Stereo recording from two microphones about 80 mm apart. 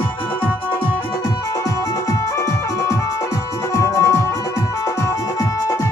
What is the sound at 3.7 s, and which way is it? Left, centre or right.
Music, left.